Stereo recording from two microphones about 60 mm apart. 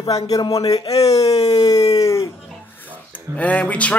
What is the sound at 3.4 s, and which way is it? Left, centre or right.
Speech, left.